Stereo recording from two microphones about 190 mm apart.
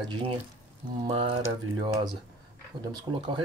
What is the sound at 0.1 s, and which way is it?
Speech, 30° right (ahead or behind).